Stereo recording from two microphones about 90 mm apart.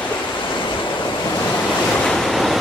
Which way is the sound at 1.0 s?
45° left (ahead or behind).